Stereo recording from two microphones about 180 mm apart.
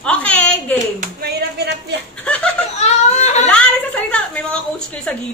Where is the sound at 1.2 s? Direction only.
65° right (ahead or behind).